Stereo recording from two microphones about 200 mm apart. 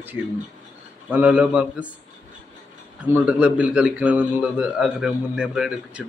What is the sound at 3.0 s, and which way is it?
A man's voice, 5° right (ahead or behind).